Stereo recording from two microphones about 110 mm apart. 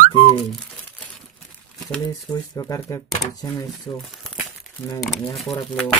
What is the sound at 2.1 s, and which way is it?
Speech, 30° left (ahead or behind).